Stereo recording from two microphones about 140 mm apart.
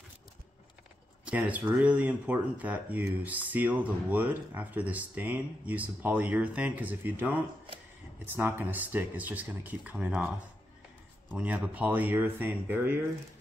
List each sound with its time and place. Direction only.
1.2 s speech: 10° right (ahead or behind)
11.2 s speech: 10° right (ahead or behind)